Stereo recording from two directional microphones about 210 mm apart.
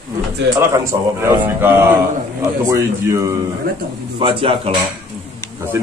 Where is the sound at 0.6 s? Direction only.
15° right (ahead or behind).